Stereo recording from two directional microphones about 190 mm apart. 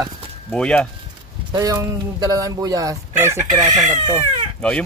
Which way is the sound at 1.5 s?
20° right (ahead or behind).